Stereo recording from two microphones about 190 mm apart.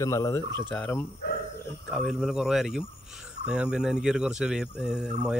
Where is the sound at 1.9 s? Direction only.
Centre (ahead or behind).